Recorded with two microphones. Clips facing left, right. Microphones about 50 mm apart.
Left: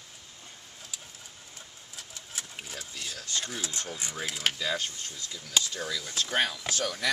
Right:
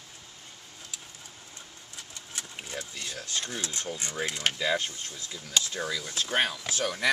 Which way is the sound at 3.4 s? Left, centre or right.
Centre.